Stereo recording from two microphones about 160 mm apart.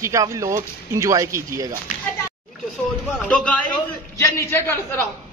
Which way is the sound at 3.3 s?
10° left (ahead or behind).